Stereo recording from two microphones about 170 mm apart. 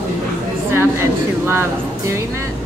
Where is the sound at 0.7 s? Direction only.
15° right (ahead or behind).